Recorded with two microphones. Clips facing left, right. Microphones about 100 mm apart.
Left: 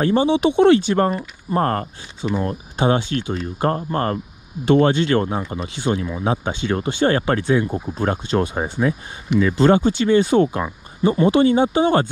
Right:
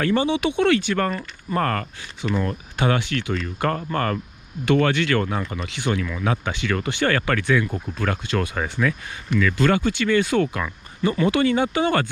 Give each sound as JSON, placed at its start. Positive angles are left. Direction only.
{"t": 0.0, "sound": "speech", "side_deg": 20}